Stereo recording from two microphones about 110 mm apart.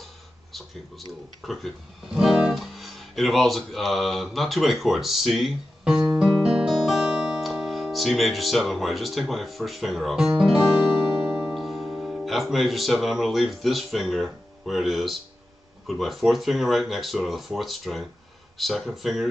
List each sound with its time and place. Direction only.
0.5 s speech: centre (ahead or behind)